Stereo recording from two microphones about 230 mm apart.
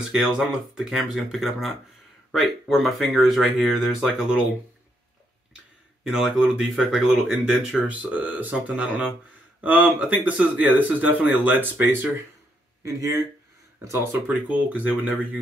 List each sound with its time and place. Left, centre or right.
0.0 s speech: centre
6.0 s speech: centre
13.8 s speech: centre